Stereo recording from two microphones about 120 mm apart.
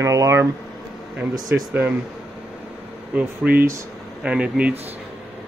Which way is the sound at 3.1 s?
15° right (ahead or behind).